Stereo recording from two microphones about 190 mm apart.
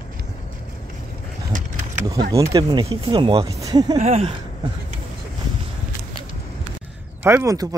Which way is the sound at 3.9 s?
35° right (ahead or behind).